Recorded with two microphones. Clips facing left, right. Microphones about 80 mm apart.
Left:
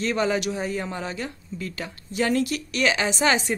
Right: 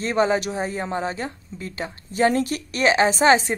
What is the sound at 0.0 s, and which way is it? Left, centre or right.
Speech, right.